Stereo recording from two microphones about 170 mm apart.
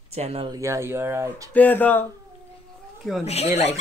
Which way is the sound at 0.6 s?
15° right (ahead or behind).